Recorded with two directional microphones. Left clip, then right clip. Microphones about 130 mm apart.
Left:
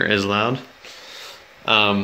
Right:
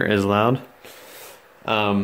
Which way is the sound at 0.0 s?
40° right (ahead or behind).